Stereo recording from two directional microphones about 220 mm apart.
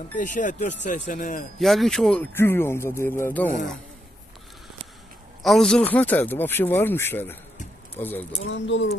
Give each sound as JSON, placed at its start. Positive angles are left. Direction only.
{"t": 0.2, "sound": "speech", "side_deg": 35}
{"t": 1.6, "sound": "speech", "side_deg": 0}
{"t": 5.4, "sound": "speech", "side_deg": 0}
{"t": 8.5, "sound": "speech", "side_deg": 55}